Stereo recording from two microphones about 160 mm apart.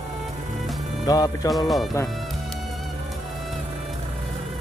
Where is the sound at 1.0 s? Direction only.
25° left (ahead or behind).